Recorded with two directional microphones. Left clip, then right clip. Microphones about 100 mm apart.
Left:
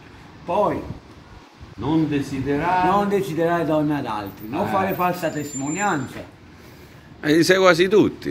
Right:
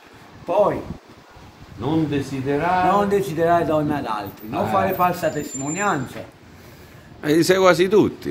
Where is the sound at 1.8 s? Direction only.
30° right (ahead or behind).